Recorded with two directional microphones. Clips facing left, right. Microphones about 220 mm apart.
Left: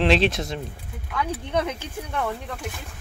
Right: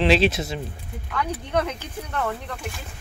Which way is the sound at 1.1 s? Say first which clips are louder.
Right 1 dB; 10° left (ahead or behind).